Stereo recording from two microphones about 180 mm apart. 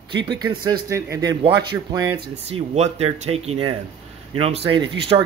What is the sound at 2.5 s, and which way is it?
A man's voice, 35° right (ahead or behind).